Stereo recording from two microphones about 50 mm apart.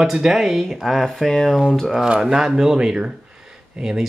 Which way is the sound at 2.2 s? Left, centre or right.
Centre.